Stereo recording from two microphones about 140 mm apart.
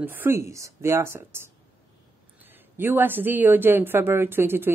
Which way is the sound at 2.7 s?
15° right (ahead or behind).